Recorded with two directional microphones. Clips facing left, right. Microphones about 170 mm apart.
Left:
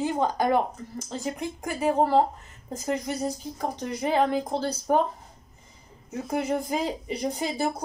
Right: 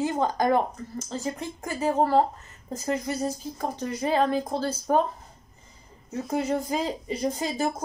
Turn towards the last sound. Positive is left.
turn(degrees=15)  # may be behind; listen again after turning